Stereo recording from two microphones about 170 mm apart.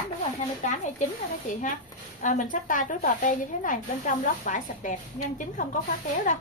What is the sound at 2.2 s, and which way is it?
Speech, 50° left (ahead or behind).